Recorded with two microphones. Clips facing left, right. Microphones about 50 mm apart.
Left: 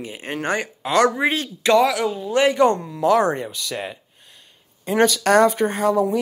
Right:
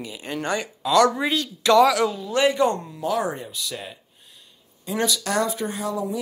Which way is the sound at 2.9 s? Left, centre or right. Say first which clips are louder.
Left 7 dB; left.